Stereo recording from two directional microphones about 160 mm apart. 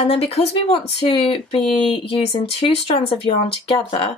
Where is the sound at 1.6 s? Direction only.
Centre (ahead or behind).